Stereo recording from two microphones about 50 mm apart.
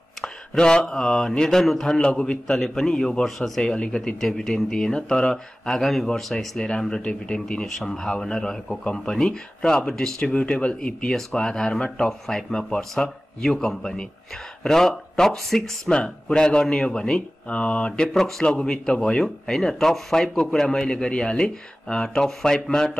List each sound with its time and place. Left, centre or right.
0.2 s speech: centre
2.0 s speech: centre
10.3 s speech: left; by 15.9 s centre
15.9 s speech: centre
18.0 s speech: centre